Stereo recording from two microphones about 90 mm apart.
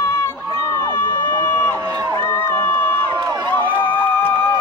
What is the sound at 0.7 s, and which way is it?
Crowd, 25° left (ahead or behind).